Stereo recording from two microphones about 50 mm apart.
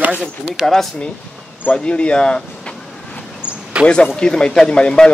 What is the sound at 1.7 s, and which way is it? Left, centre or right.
Speech, left.